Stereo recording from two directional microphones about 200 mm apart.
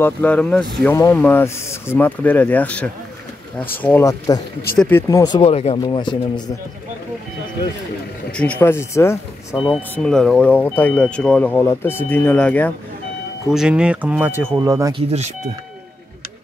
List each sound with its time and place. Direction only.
0.0 s speech: 5° left (ahead or behind)
8.3 s speech: 5° left (ahead or behind)
13.5 s speech: 5° right (ahead or behind)
15.0 s speech: 30° right (ahead or behind)